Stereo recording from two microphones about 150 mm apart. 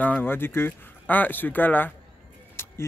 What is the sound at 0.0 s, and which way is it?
Speech, 10° left (ahead or behind).